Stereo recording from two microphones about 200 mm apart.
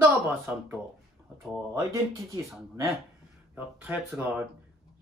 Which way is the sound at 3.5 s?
10° right (ahead or behind).